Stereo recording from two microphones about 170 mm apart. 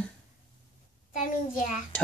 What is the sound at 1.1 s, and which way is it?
Speech, 50° left (ahead or behind).